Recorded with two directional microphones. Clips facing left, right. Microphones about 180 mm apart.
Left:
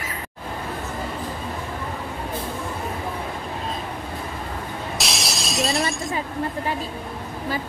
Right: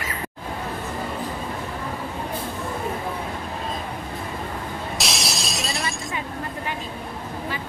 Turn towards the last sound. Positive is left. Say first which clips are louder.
# left 4 dB
turn(degrees=35)  # may be behind; listen again after turning